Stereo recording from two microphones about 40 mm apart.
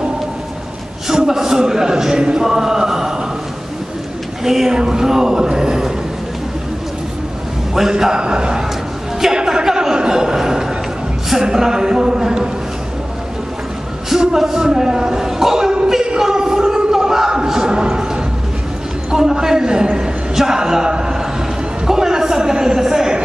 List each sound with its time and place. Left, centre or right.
1.0 s a man's voice: centre
2.4 s chant: centre
4.5 s a man's voice: centre
7.7 s a man's voice: centre
9.2 s a sound: centre
11.4 s speech: centre
14.2 s a sound: centre